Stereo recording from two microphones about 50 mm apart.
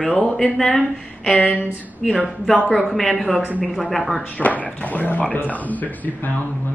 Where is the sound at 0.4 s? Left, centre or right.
Centre.